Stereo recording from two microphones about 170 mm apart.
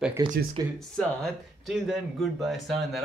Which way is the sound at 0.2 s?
20° right (ahead or behind).